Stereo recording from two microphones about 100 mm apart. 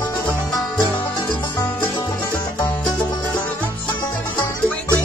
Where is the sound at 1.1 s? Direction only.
45° left (ahead or behind).